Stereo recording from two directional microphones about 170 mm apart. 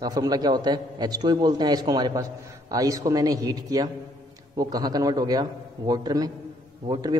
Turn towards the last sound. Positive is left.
turn(degrees=-25)  # may be behind; listen again after turning